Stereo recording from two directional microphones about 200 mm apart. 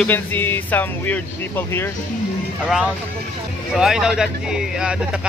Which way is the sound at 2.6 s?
5° right (ahead or behind).